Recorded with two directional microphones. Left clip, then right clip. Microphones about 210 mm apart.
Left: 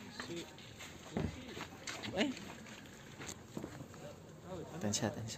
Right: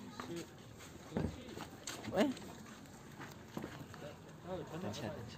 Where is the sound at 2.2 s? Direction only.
20° right (ahead or behind).